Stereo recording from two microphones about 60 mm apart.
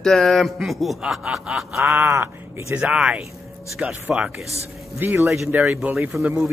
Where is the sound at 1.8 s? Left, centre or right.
Right.